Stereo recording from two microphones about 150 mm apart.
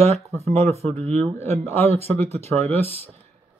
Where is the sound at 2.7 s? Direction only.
15° left (ahead or behind).